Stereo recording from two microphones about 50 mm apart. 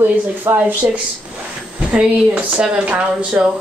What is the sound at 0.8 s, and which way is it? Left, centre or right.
Speech, right.